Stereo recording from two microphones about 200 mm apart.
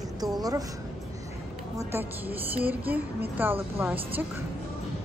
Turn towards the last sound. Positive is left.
turn(degrees=-10)  # may be behind; listen again after turning